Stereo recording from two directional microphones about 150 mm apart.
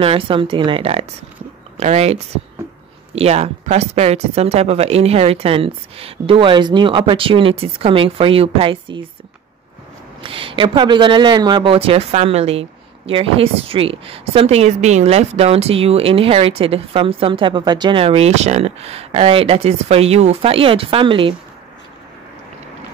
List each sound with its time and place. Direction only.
0.0 s speech: 40° right (ahead or behind)
10.2 s speech: 35° right (ahead or behind)